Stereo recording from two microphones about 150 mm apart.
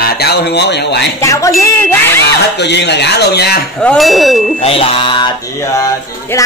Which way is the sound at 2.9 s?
90° left.